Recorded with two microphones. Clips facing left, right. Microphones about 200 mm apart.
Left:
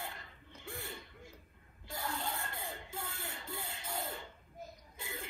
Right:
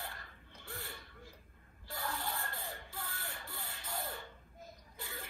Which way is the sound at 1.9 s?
20° left (ahead or behind).